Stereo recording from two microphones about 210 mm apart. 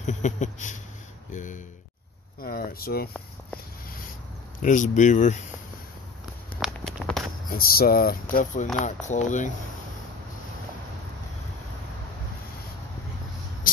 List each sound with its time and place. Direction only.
0.0 s a sound: 35° left (ahead or behind)
1.3 s speech: 35° left (ahead or behind)
4.6 s speech: 35° left (ahead or behind)
6.6 s walk: centre (ahead or behind)
7.5 s speech: 45° left (ahead or behind)